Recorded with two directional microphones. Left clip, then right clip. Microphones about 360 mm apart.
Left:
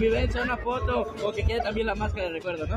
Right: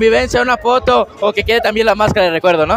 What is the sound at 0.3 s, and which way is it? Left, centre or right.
Speech, right.